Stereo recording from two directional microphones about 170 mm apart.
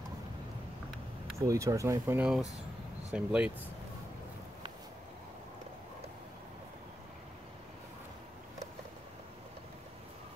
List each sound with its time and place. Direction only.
1.4 s speech: 20° right (ahead or behind)